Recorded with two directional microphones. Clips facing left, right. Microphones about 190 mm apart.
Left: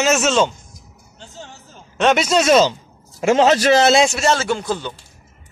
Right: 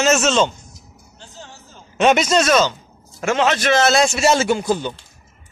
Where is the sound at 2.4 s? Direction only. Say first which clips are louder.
Left 3 dB; 30° left (ahead or behind).